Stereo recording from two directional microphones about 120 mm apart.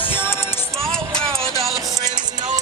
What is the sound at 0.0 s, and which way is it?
Music, 15° left (ahead or behind).